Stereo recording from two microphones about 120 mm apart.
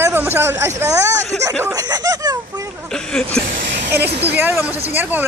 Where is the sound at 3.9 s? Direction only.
15° right (ahead or behind).